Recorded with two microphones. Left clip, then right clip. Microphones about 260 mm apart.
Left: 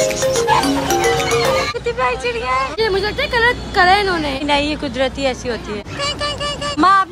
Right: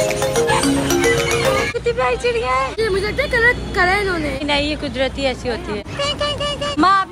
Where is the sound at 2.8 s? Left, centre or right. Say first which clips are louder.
Left 1 dB; left.